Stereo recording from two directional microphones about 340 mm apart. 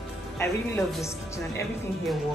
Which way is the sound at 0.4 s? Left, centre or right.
Centre.